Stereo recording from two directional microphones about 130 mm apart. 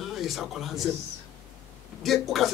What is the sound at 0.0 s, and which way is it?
Speech, centre (ahead or behind).